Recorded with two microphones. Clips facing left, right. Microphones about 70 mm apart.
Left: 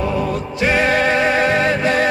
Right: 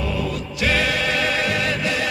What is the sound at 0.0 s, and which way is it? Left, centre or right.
Music, left.